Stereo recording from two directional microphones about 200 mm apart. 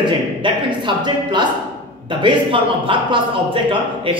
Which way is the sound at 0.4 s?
25° right (ahead or behind).